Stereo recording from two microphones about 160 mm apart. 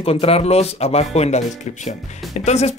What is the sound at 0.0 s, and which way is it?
Speech, 35° left (ahead or behind).